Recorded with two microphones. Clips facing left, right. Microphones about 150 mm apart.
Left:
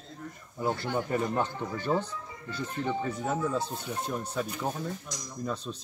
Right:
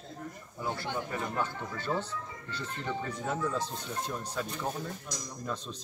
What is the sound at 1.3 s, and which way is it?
Speech, 15° left (ahead or behind).